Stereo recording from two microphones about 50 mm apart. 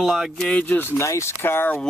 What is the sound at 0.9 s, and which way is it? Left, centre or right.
Speech, left.